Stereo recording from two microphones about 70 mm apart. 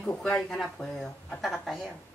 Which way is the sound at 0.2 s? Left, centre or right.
Centre.